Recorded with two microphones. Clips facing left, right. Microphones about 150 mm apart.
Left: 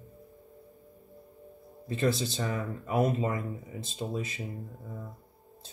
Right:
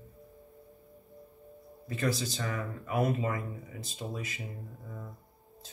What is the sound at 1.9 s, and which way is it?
Speech, 25° left (ahead or behind).